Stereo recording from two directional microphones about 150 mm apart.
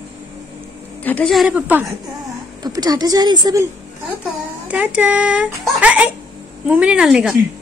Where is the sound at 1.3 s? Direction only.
Centre (ahead or behind).